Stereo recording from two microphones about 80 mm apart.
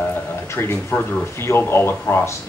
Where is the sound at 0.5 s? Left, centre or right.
Left.